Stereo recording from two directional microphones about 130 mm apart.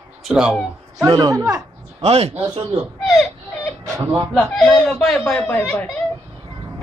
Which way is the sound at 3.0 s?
5° left (ahead or behind).